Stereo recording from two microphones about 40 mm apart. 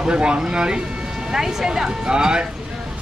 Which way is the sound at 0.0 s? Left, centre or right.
Right.